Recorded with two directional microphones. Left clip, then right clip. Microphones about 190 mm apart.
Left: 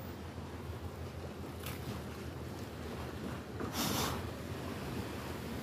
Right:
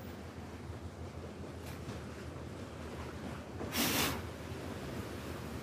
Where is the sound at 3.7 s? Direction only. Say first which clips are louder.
Right 3 dB; 45° right (ahead or behind).